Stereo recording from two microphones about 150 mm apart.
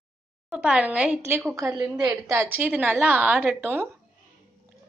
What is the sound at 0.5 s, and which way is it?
Speech, 5° right (ahead or behind).